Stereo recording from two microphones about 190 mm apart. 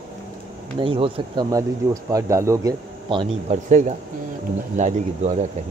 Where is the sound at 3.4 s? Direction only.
40° right (ahead or behind).